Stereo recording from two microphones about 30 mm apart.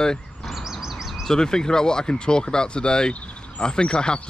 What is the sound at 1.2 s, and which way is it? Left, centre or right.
Speech, left.